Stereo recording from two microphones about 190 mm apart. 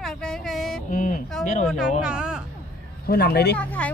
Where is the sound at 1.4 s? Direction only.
40° left (ahead or behind).